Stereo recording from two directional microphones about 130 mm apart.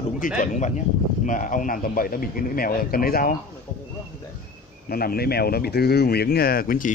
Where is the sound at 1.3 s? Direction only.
90° left.